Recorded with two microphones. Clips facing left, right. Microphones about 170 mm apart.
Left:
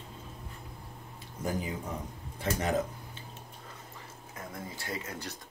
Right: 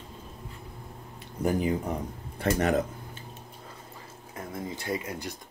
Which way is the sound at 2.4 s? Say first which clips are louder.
Right 6 dB; 65° right (ahead or behind).